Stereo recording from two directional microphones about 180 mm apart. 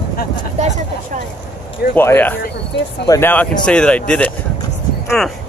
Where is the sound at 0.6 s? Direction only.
40° right (ahead or behind).